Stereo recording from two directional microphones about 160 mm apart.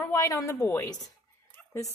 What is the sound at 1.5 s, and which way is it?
Whispering, 20° left (ahead or behind).